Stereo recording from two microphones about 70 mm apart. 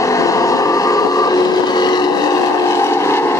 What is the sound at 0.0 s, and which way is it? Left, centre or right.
Vehicle, left.